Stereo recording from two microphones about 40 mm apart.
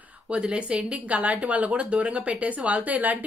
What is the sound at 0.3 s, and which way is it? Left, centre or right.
Speech, right.